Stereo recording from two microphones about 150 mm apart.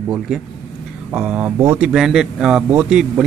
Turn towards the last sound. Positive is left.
turn(degrees=-5)  # may be behind; listen again after turning